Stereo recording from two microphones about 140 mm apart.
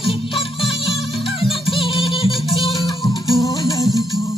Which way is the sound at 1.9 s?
40° left (ahead or behind).